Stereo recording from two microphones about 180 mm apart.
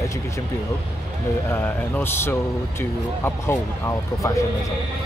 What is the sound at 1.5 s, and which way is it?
Speech, 10° left (ahead or behind).